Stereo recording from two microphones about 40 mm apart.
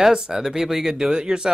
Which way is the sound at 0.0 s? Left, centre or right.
Centre.